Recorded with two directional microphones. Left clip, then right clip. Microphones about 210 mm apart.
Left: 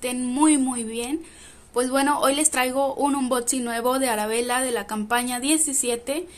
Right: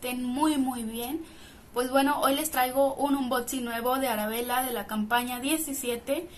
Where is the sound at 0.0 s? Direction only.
35° left (ahead or behind).